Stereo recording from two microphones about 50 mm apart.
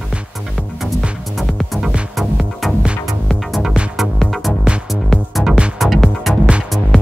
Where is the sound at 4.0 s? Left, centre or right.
Centre.